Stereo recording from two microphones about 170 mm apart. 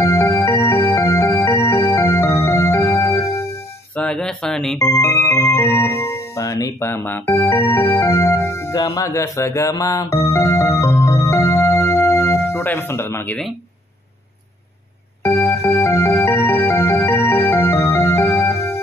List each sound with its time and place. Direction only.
0.0 s music: 15° left (ahead or behind)
3.9 s music: 5° left (ahead or behind)
4.7 s speech: 15° left (ahead or behind)
15.2 s music: 15° left (ahead or behind)